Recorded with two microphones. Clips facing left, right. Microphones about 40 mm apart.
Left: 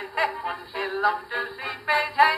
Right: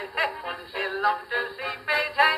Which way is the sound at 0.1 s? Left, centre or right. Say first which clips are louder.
Left 2 dB; centre.